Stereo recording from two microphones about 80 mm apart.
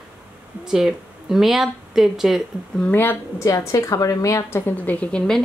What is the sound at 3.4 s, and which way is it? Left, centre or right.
A woman's voice, left.